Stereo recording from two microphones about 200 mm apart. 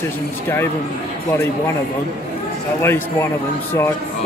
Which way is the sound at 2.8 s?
10° left (ahead or behind).